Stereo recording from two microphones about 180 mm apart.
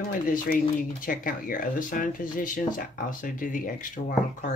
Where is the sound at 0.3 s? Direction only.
50° left (ahead or behind).